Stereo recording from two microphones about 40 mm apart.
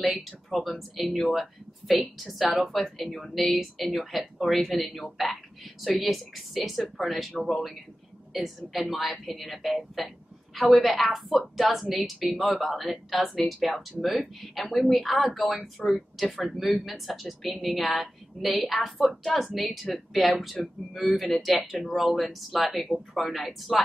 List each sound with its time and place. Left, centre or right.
0.0 s speech: centre